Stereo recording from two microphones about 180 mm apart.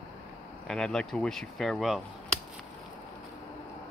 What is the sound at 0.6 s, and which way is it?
Speech, 5° left (ahead or behind).